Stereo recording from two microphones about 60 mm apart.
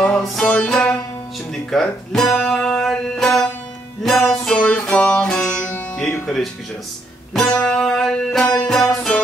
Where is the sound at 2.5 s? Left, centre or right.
Centre.